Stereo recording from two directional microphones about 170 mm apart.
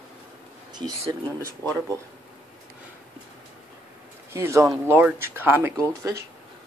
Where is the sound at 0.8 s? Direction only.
25° right (ahead or behind).